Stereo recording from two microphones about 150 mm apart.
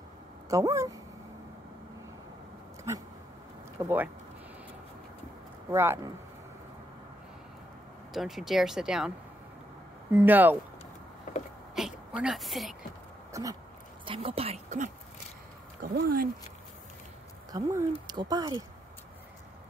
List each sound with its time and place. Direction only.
0.5 s speech: 20° right (ahead or behind)
3.8 s speech: 10° right (ahead or behind)
5.7 s speech: 15° right (ahead or behind)
8.1 s speech: centre (ahead or behind)
10.1 s speech: 10° right (ahead or behind)
11.7 s a sound: 5° right (ahead or behind)
13.3 s speech: 25° right (ahead or behind)
14.0 s speech: 40° right (ahead or behind)
15.8 s speech: 85° right
17.5 s speech: 20° right (ahead or behind)